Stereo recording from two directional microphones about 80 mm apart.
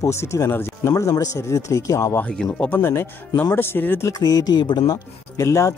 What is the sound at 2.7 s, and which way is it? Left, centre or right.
Speech, left.